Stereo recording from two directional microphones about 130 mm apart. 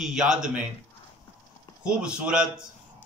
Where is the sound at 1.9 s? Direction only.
5° right (ahead or behind).